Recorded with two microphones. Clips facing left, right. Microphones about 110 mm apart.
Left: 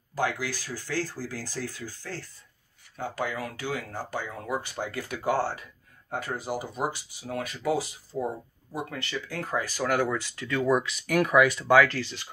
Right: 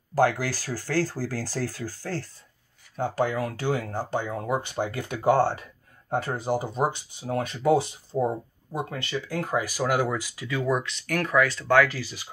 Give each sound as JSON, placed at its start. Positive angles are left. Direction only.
{"t": 0.1, "sound": "speech", "side_deg": -40}
{"t": 11.7, "sound": "speech", "side_deg": -5}